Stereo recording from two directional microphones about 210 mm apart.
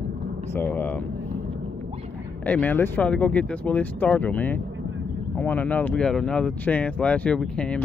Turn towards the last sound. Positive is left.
turn(degrees=5)  # may be behind; listen again after turning